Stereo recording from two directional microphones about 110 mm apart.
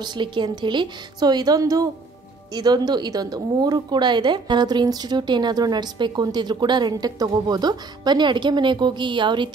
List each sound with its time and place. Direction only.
0.0 s a woman's voice: 45° right (ahead or behind)